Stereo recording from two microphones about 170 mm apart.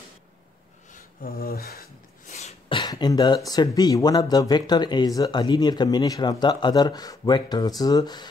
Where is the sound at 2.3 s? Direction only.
40° left (ahead or behind).